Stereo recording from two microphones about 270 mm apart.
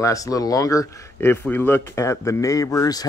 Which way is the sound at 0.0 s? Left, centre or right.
Centre.